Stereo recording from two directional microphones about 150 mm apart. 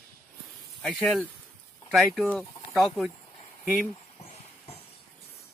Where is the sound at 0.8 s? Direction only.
5° left (ahead or behind).